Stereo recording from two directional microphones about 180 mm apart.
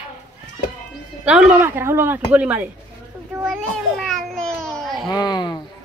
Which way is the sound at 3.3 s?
5° right (ahead or behind).